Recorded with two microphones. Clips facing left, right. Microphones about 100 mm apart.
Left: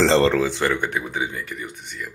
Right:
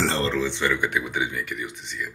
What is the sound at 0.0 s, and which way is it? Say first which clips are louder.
Speech: left 8 dB; 85° left.